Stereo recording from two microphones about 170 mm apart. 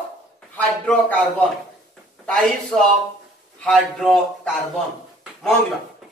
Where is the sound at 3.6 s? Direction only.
5° left (ahead or behind).